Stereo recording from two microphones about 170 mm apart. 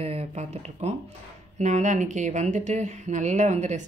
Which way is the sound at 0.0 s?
35° right (ahead or behind).